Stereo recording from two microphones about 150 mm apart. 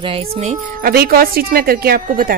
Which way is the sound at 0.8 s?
90° right.